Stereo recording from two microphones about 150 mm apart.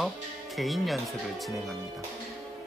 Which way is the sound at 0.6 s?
Centre (ahead or behind).